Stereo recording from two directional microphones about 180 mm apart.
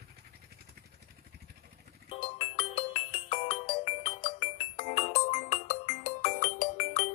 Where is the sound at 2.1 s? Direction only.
30° left (ahead or behind).